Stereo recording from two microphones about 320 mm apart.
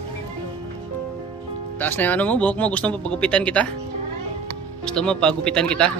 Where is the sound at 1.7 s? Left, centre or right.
Centre.